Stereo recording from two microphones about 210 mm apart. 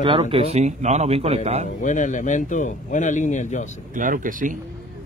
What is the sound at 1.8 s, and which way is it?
Speech, 35° left (ahead or behind).